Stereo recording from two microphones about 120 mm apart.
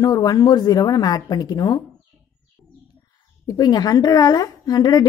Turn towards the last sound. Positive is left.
turn(degrees=35)  # may be behind; listen again after turning